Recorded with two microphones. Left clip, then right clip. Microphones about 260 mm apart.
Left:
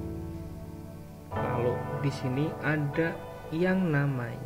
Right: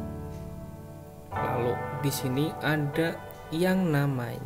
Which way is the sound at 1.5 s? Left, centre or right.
Centre.